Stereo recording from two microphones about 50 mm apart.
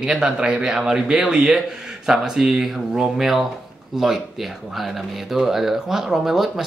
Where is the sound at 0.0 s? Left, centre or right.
Centre.